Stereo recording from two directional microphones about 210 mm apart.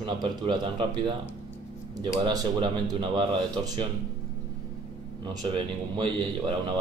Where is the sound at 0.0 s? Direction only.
20° right (ahead or behind).